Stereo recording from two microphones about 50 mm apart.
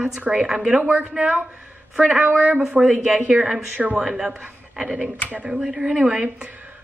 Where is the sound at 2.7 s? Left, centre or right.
Centre.